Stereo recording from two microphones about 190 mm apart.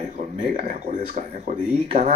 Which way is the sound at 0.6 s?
35° right (ahead or behind).